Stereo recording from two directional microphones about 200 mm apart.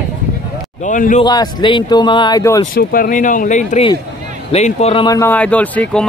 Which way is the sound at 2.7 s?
45° left (ahead or behind).